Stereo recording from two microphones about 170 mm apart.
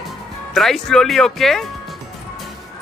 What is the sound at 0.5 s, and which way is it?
Speech, centre (ahead or behind).